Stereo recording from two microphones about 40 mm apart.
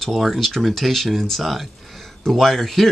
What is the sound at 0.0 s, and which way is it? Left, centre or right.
Speech, centre.